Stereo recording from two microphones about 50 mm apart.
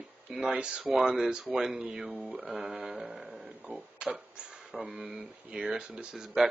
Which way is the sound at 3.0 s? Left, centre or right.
Right.